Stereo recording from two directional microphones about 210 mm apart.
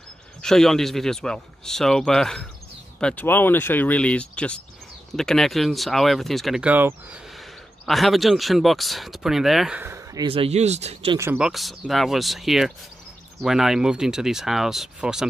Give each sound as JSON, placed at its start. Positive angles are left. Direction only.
{"t": 0.4, "sound": "speech", "side_deg": 0}
{"t": 10.2, "sound": "speech", "side_deg": -25}
{"t": 11.1, "sound": "speech", "side_deg": -10}